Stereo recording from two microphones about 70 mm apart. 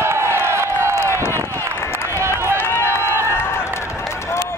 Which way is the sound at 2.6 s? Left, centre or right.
Left.